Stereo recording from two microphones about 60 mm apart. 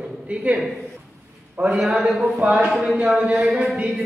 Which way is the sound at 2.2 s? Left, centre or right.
Right.